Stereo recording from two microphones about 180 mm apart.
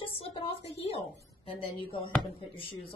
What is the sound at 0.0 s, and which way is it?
A woman's voice, 30° left (ahead or behind).